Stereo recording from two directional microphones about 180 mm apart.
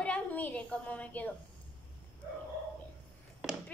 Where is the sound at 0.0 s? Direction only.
10° left (ahead or behind).